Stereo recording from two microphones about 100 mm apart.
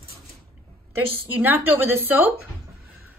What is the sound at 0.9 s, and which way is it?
Speech, 20° right (ahead or behind).